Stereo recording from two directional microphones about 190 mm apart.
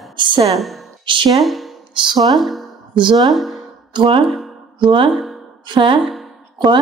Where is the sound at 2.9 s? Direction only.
25° right (ahead or behind).